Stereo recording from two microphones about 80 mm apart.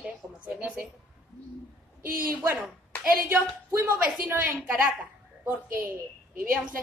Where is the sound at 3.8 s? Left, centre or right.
Right.